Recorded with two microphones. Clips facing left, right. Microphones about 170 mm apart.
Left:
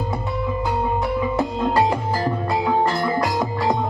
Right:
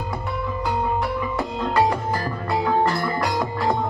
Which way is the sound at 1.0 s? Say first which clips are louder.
Left 4 dB; 25° left (ahead or behind).